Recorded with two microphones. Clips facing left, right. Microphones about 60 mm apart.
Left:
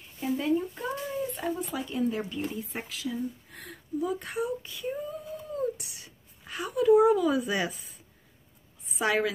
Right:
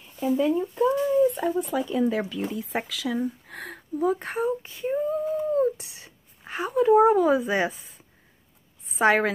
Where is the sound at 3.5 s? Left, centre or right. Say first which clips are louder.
Even; right.